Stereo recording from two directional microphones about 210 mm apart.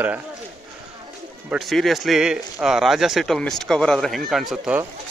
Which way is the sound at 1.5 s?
Centre (ahead or behind).